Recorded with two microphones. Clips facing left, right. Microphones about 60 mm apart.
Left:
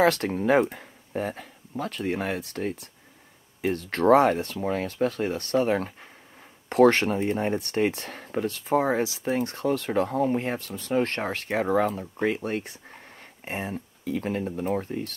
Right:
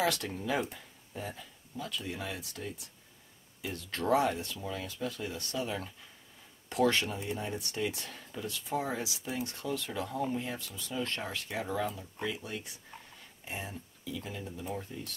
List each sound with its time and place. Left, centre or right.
0.0 s speech: left